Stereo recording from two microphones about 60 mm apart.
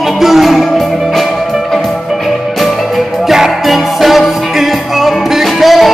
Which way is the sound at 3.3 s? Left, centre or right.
Centre.